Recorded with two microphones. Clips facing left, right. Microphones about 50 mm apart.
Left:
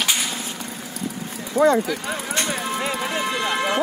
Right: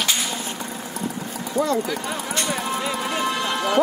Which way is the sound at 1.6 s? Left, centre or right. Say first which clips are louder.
Left 5 dB; left.